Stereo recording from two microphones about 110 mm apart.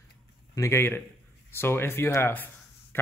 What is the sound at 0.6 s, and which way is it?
Speech, 25° left (ahead or behind).